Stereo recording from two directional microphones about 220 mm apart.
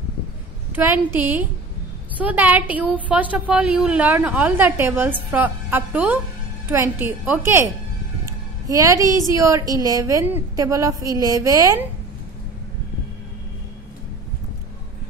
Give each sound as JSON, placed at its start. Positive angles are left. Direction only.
{"t": 0.7, "sound": "a woman's voice", "side_deg": -10}